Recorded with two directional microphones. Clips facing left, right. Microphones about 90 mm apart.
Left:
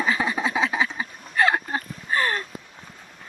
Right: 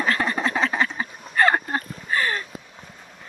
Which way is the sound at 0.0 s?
10° left (ahead or behind).